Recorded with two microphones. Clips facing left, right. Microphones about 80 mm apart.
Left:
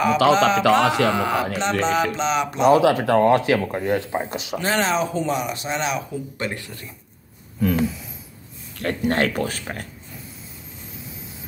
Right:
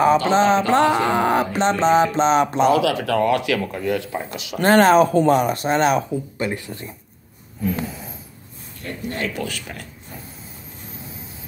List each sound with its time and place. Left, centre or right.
0.3 s music: right
0.8 s speech: left
1.1 s a sound: right
2.7 s speech: left
4.6 s speech: right
6.3 s speech: centre
8.7 s speech: left
9.3 s speech: left